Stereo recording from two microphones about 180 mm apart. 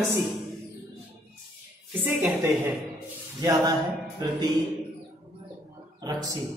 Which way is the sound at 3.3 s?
20° right (ahead or behind).